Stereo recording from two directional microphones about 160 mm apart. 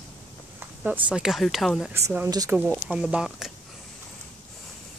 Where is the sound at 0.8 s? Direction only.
10° right (ahead or behind).